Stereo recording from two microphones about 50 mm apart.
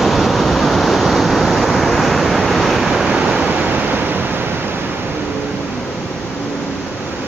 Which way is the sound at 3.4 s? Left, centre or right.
Right.